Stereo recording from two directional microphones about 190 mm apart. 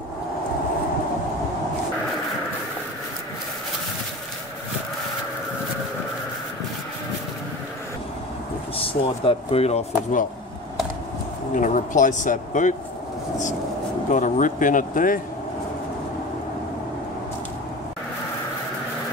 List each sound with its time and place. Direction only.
8.7 s speech: 30° left (ahead or behind)
11.5 s speech: 40° left (ahead or behind)
14.1 s speech: 40° left (ahead or behind)